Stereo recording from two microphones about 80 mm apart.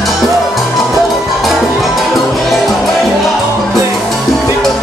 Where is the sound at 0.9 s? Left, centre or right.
Centre.